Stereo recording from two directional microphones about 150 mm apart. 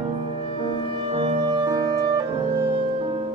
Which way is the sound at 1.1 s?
35° right (ahead or behind).